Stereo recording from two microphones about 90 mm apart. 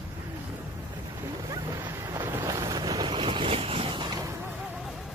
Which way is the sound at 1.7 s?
30° right (ahead or behind).